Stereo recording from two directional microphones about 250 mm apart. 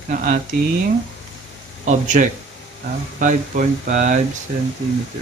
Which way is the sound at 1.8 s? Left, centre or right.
Right.